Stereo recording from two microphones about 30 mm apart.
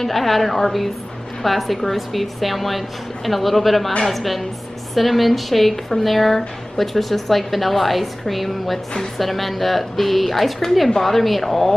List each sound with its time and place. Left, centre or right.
0.0 s a woman's voice: centre